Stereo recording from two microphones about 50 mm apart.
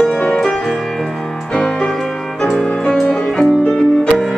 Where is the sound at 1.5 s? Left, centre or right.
Centre.